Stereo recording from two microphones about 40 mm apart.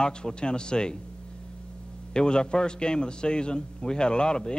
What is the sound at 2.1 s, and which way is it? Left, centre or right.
A man's voice, left.